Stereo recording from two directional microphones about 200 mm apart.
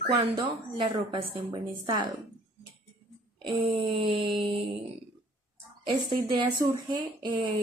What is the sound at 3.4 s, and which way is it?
Speech, 25° right (ahead or behind).